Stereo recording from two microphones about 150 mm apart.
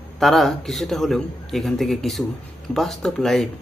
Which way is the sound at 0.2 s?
Centre (ahead or behind).